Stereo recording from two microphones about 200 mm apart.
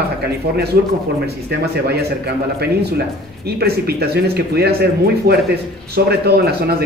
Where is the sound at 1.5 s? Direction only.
55° right (ahead or behind).